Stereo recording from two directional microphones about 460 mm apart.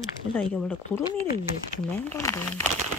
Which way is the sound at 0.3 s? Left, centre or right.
Centre.